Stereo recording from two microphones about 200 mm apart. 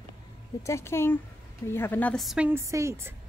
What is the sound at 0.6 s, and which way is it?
A woman's voice, 15° left (ahead or behind).